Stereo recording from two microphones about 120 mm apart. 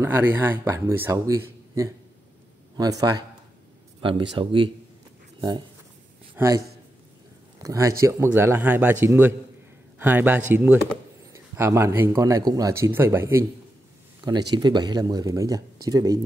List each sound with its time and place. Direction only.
0.0 s a man's voice: 15° right (ahead or behind)
4.0 s speech: 45° right (ahead or behind)
6.3 s a man's voice: 25° right (ahead or behind)
14.2 s speech: 35° right (ahead or behind)